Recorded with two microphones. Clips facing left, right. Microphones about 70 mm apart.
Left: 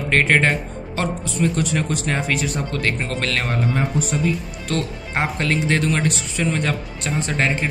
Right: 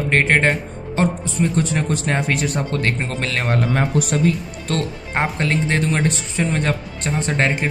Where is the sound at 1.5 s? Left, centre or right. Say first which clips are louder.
Right 2 dB; right.